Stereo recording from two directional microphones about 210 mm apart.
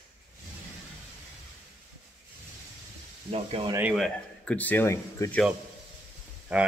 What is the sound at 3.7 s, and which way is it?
Speech, 5° right (ahead or behind).